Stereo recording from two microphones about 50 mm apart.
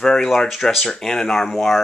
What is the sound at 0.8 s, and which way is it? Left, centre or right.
Speech, centre.